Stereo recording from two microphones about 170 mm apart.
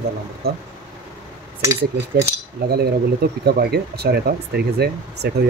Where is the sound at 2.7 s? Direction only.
65° right (ahead or behind).